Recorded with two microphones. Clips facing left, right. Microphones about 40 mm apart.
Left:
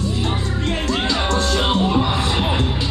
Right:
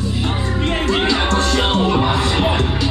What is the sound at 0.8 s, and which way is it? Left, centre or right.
Music, right.